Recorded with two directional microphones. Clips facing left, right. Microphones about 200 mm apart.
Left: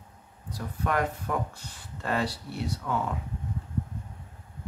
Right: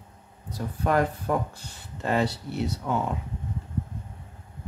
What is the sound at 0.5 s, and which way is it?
Speech, 30° right (ahead or behind).